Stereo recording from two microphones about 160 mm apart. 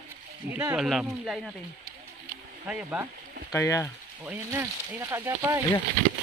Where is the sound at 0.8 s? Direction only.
5° right (ahead or behind).